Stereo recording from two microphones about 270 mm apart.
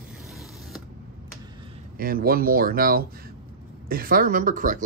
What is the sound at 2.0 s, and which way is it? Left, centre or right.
Speech, right.